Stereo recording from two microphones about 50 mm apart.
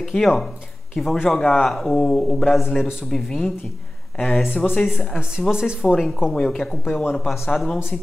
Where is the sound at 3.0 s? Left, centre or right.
Centre.